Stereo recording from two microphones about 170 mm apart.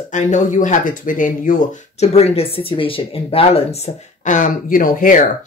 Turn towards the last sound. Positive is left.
turn(degrees=50)  # may be behind; listen again after turning